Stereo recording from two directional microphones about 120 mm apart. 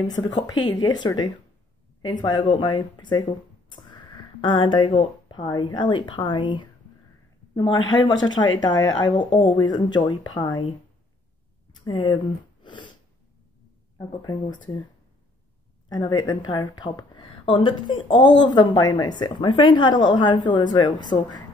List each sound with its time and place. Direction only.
0.0 s a woman's voice: 35° left (ahead or behind)
11.8 s speech: 45° left (ahead or behind)
12.6 s sniff: 40° left (ahead or behind)
15.9 s a woman's voice: 35° left (ahead or behind)